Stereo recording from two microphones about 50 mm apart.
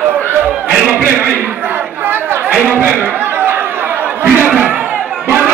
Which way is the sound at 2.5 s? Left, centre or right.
Right.